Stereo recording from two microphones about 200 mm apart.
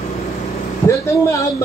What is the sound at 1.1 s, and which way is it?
Speech, 15° left (ahead or behind).